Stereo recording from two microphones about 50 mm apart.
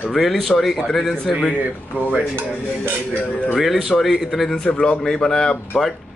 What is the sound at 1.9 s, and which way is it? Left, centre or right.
Dishes, right.